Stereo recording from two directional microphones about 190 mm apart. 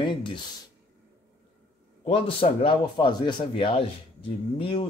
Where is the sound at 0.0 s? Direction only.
25° left (ahead or behind).